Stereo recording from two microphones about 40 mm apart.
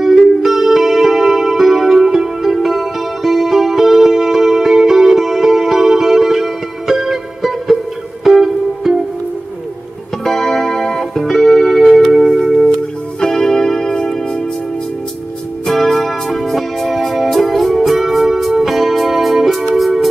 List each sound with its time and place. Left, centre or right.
0.0 s music: centre
10.2 s music: centre
15.7 s music: centre